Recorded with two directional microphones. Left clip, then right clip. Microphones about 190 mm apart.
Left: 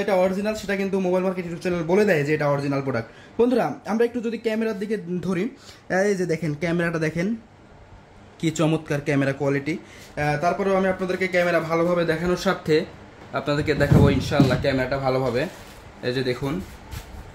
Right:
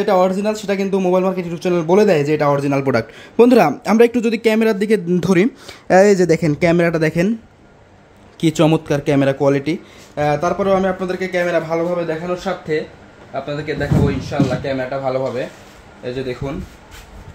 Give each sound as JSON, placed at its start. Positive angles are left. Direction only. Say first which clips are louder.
{"t": 0.0, "sound": "speech", "louder": "right 6 dB", "side_deg": -35}
{"t": 8.4, "sound": "speech", "louder": "right 8 dB", "side_deg": -25}
{"t": 11.0, "sound": "speech", "louder": "right 3 dB", "side_deg": -15}
{"t": 12.5, "sound": "speech", "louder": "left 1 dB", "side_deg": 35}
{"t": 16.4, "sound": "speech", "louder": "right 2 dB", "side_deg": 25}